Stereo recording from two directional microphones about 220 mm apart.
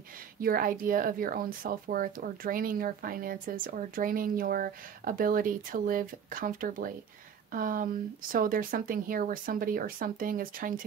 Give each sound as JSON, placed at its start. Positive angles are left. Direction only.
{"t": 0.4, "sound": "a woman's voice", "side_deg": -40}